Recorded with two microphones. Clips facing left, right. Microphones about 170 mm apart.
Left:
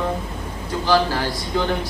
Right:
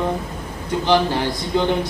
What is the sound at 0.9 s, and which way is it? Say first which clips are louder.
Speech: right 1 dB; 20° right (ahead or behind).